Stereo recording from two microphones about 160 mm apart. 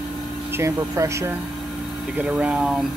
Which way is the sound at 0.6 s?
20° right (ahead or behind).